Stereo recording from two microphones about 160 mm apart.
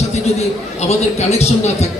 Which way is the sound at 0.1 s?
40° left (ahead or behind).